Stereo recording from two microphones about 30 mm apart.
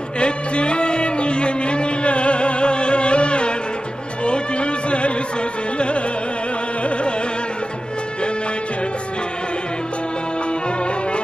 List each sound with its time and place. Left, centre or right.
0.2 s music: left
4.2 s a sound: left
5.8 s music: left